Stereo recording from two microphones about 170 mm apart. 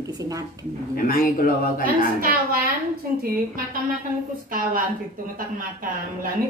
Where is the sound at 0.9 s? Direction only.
55° left (ahead or behind).